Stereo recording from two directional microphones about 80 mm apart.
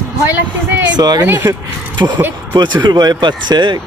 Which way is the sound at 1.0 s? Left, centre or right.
Right.